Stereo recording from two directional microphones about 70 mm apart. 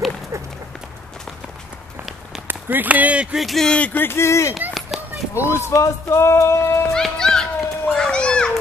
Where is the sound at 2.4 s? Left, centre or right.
Right.